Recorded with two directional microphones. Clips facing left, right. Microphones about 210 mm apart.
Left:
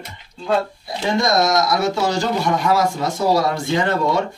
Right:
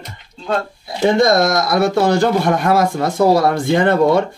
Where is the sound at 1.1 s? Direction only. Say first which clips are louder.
Right 2 dB; 55° right (ahead or behind).